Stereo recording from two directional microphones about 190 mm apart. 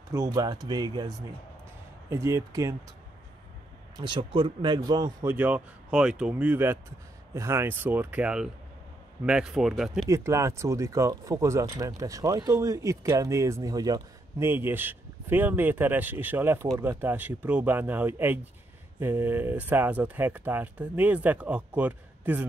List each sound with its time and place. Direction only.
0.1 s speech: 15° right (ahead or behind)
3.9 s speech: 25° right (ahead or behind); by 10.0 s centre (ahead or behind)
10.0 s speech: 15° right (ahead or behind)